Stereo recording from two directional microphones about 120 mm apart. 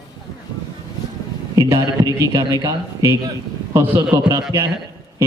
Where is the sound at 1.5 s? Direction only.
25° right (ahead or behind).